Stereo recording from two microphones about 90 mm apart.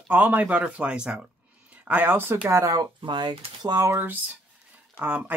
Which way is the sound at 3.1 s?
60° right (ahead or behind).